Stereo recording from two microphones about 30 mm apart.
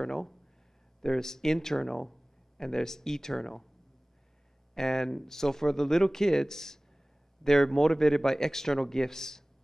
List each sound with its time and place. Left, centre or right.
0.0 s speech: centre
4.7 s speech: centre